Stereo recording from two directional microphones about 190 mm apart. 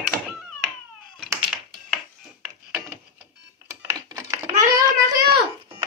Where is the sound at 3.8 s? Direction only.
15° right (ahead or behind).